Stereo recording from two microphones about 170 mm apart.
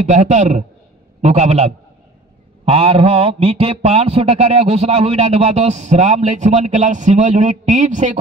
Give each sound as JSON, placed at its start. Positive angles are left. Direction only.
{"t": 0.0, "sound": "a man's voice", "side_deg": -45}